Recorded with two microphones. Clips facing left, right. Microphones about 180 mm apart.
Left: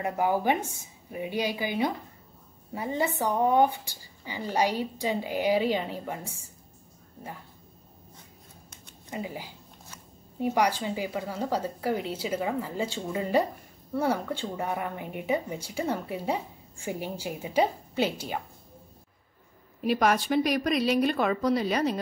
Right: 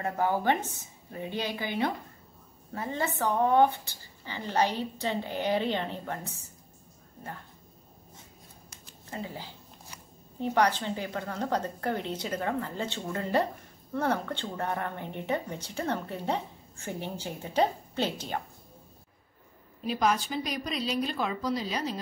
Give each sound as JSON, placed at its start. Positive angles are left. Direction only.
{"t": 0.0, "sound": "speech", "side_deg": 15}
{"t": 9.1, "sound": "speech", "side_deg": 15}
{"t": 19.8, "sound": "a woman's voice", "side_deg": 65}